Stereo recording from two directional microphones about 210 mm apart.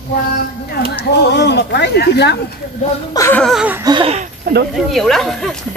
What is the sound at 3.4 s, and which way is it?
Speech, 5° right (ahead or behind).